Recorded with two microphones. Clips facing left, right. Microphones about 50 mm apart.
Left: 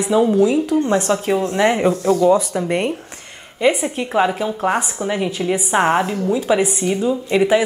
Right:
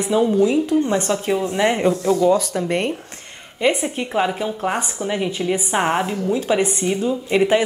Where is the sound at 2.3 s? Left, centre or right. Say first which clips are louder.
Left 2 dB; left.